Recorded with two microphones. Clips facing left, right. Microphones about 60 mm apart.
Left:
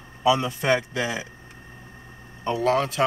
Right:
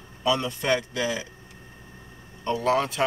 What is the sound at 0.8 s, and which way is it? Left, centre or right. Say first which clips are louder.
Speech: left 1 dB; left.